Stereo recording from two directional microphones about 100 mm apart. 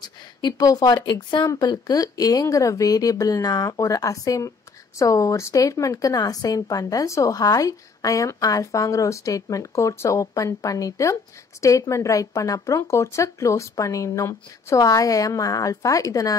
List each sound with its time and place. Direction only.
0.0 s speech: 40° left (ahead or behind)